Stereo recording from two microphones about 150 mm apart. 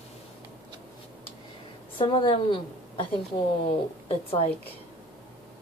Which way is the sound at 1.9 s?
35° left (ahead or behind).